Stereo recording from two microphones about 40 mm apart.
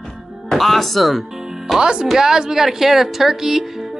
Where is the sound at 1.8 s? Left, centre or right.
Centre.